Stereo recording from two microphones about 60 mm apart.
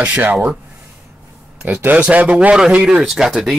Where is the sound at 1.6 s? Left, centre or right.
Right.